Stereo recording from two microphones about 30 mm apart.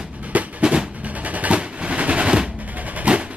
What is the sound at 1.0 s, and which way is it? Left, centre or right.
Drum, right.